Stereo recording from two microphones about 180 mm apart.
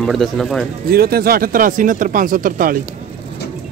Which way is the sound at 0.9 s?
60° right (ahead or behind).